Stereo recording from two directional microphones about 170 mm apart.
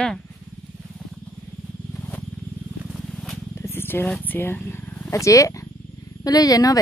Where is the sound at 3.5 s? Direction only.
15° left (ahead or behind).